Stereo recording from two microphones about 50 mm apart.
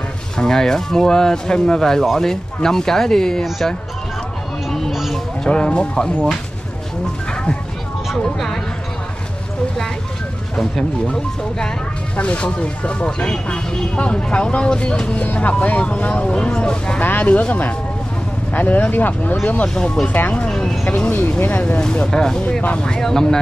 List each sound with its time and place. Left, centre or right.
0.4 s speech: centre
3.4 s speech: centre
4.6 s music: centre
5.4 s speech: centre
10.6 s speech: centre
12.2 s speech: left
15.2 s speech: left; by 17.0 s centre
17.0 s speech: left
19.7 s speech: centre
20.2 s speech: left
21.7 s speech: centre